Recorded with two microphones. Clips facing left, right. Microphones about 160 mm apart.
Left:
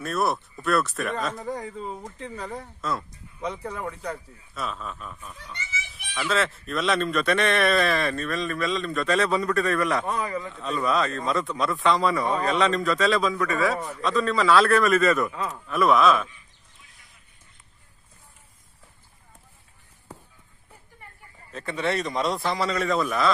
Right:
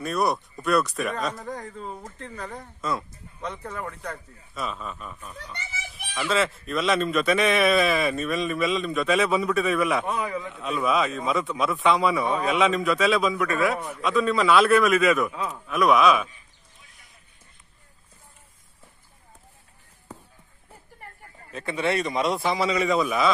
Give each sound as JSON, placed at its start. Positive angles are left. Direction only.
{"t": 0.0, "sound": "a man's voice", "side_deg": 0}
{"t": 5.7, "sound": "children playing", "side_deg": -50}
{"t": 6.1, "sound": "a man's voice", "side_deg": 0}
{"t": 8.9, "sound": "a man's voice", "side_deg": -5}
{"t": 21.5, "sound": "a man's voice", "side_deg": -5}